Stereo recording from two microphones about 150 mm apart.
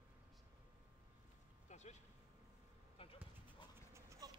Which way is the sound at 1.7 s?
50° left (ahead or behind).